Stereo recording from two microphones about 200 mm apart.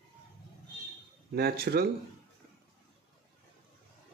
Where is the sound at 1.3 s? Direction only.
50° right (ahead or behind).